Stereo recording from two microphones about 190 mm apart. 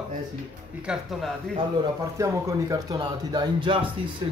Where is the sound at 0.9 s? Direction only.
5° right (ahead or behind).